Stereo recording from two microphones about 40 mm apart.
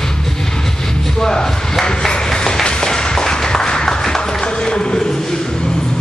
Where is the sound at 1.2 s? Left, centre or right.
Centre.